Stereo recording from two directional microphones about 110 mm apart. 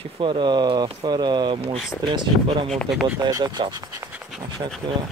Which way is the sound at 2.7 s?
Centre (ahead or behind).